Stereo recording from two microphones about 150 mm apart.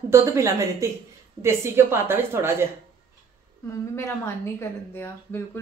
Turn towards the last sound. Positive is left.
turn(degrees=15)  # may be behind; listen again after turning